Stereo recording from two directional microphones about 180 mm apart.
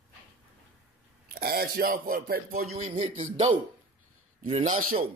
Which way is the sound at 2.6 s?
35° right (ahead or behind).